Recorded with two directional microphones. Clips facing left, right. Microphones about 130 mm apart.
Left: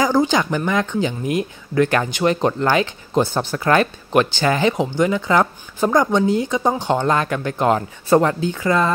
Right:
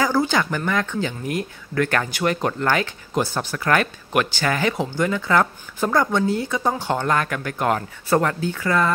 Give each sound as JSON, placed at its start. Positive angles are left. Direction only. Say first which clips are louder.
{"t": 0.0, "sound": "speech", "louder": "left 3 dB", "side_deg": 20}